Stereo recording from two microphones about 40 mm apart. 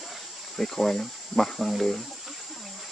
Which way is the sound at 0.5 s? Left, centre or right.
Centre.